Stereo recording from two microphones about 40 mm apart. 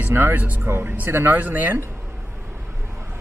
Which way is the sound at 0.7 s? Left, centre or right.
Right.